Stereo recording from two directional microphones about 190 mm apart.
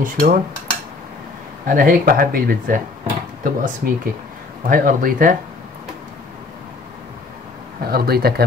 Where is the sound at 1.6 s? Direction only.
50° right (ahead or behind).